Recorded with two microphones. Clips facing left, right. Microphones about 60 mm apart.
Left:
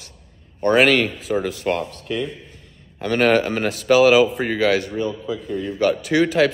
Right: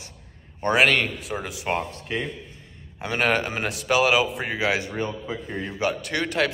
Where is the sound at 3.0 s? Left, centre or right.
Centre.